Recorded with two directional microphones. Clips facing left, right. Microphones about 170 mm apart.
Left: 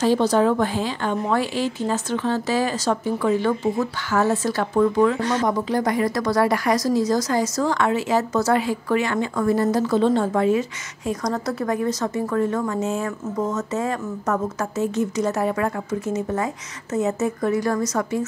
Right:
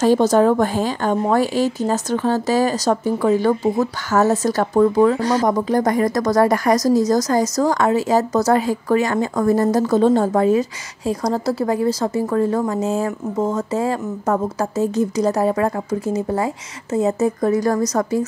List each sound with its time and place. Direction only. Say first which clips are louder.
0.0 s speech: right 4 dB; 45° right (ahead or behind)